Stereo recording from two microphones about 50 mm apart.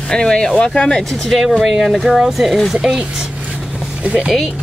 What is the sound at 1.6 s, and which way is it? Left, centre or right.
Speech, centre.